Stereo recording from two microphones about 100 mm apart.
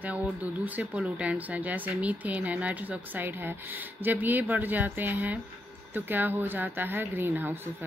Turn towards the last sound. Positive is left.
turn(degrees=-20)  # may be behind; listen again after turning